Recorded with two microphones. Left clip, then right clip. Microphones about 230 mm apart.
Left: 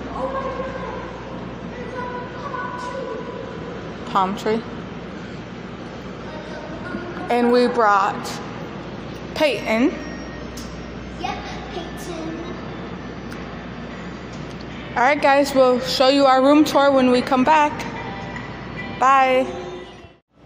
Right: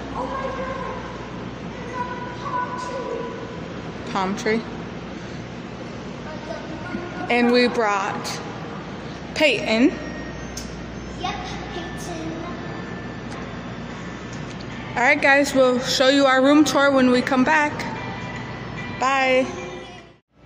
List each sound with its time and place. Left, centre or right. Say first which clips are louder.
4.1 s a woman's voice: left 3 dB; centre
7.2 s a woman's voice: left 1 dB; centre
9.4 s a woman's voice: right 1 dB; centre
15.0 s a woman's voice: left 1 dB; centre
18.9 s a woman's voice: left 4 dB; centre